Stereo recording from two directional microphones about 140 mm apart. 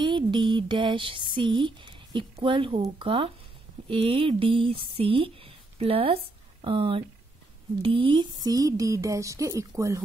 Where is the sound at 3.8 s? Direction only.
40° right (ahead or behind).